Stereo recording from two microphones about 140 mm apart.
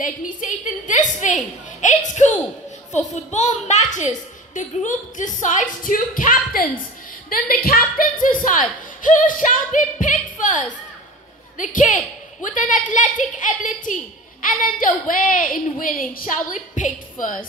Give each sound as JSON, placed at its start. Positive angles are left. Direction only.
{"t": 0.0, "sound": "a woman's voice", "side_deg": 70}